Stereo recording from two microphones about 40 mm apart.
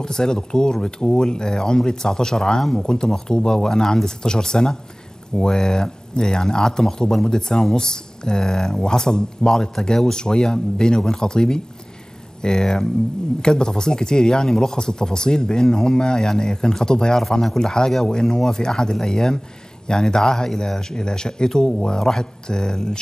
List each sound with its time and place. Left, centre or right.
0.0 s speech: centre